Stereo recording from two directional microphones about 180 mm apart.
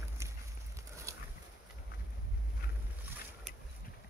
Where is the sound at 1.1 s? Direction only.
15° right (ahead or behind).